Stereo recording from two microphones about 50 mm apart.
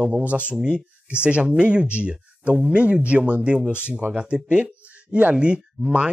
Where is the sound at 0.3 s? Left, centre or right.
Right.